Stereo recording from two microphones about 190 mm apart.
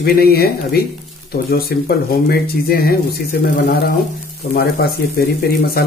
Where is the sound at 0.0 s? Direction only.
55° left (ahead or behind).